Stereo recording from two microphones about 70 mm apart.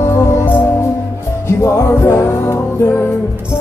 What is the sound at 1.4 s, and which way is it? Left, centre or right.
Music, left.